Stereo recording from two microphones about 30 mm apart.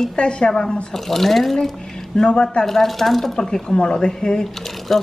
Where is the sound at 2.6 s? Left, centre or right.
Centre.